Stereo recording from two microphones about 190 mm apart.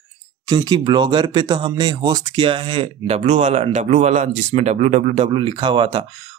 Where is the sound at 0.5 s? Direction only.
25° right (ahead or behind).